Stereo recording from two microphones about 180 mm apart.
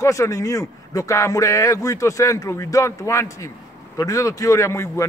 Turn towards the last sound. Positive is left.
turn(degrees=15)  # may be behind; listen again after turning